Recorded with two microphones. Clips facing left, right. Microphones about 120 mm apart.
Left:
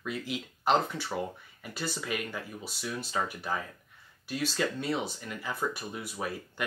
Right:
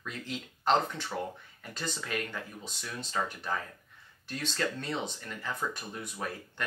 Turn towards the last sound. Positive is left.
turn(degrees=10)  # may be behind; listen again after turning